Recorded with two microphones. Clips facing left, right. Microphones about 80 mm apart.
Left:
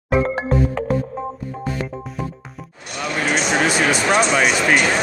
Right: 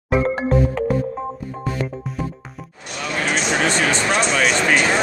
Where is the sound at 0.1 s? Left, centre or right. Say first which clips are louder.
Even; centre.